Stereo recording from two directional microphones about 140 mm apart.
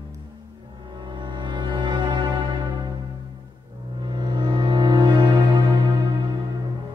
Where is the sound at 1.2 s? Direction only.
35° right (ahead or behind).